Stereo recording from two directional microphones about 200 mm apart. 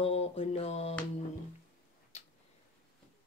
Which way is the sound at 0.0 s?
30° left (ahead or behind).